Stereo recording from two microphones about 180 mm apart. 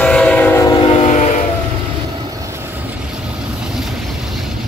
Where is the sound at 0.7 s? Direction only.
30° left (ahead or behind).